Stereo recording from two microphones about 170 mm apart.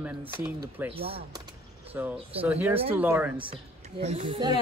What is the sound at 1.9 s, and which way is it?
Speech, 10° right (ahead or behind).